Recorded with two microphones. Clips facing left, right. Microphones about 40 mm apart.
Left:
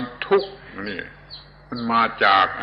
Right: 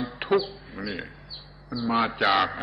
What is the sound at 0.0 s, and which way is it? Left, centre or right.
Bird, centre.